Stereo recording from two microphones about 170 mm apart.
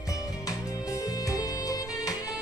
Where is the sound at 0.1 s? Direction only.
20° left (ahead or behind).